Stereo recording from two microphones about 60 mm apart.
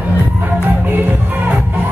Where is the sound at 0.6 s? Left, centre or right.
Right.